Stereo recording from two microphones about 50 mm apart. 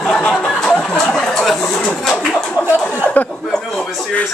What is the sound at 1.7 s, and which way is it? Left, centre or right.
Speech, centre.